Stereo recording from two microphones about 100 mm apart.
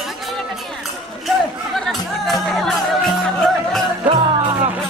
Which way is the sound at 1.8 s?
5° left (ahead or behind).